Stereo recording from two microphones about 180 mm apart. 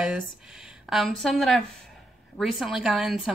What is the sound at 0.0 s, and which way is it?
A woman's voice, 5° right (ahead or behind).